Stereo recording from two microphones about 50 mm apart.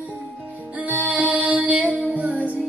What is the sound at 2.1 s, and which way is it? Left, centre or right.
Music, right.